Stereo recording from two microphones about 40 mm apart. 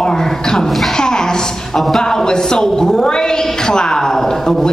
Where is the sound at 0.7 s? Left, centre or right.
Centre.